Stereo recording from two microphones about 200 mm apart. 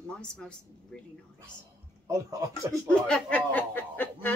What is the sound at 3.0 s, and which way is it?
Speech, 5° left (ahead or behind).